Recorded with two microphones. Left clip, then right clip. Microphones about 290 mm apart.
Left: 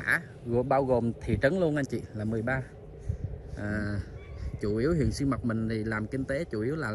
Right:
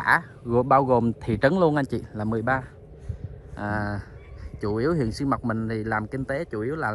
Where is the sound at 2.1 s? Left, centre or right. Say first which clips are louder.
Right 7 dB; right.